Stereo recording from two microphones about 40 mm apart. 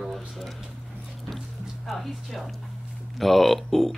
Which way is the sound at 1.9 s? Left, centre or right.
Centre.